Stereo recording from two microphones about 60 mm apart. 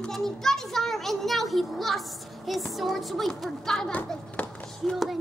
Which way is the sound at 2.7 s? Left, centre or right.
Centre.